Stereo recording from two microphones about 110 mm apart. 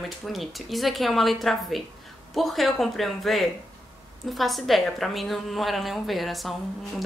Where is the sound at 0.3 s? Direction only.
Centre (ahead or behind).